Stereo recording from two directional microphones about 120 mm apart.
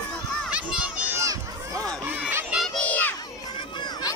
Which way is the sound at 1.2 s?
25° right (ahead or behind).